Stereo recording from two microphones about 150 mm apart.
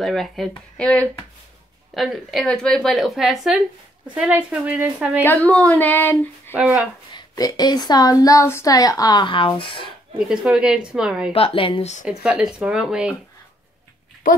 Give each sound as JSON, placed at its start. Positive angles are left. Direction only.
{"t": 0.0, "sound": "a woman's voice", "side_deg": 0}
{"t": 5.2, "sound": "speech", "side_deg": 10}
{"t": 6.5, "sound": "a woman's voice", "side_deg": -10}
{"t": 7.2, "sound": "a woman's voice", "side_deg": 25}
{"t": 10.1, "sound": "speech", "side_deg": -5}
{"t": 11.3, "sound": "speech", "side_deg": 35}
{"t": 12.0, "sound": "a woman's voice", "side_deg": -5}